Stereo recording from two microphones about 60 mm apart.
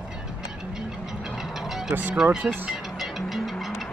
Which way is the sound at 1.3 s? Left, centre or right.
Centre.